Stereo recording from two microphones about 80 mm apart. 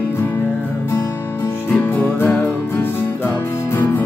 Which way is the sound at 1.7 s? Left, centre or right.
Left.